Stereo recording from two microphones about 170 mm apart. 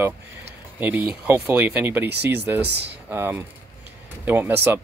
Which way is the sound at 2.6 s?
80° right.